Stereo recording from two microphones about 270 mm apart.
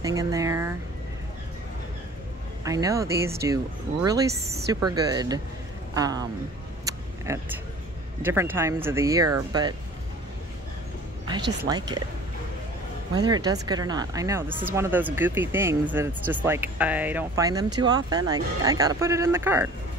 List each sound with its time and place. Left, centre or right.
0.0 s a sound: centre
2.6 s speech: centre
6.8 s a sound: centre
8.2 s speech: centre
11.2 s speech: centre
13.1 s speech: centre